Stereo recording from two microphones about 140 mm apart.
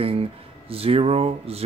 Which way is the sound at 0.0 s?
45° right (ahead or behind).